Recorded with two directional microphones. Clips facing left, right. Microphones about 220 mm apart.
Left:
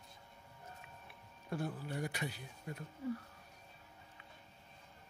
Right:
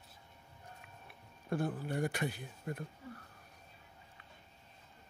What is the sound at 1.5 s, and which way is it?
Speech, 50° right (ahead or behind).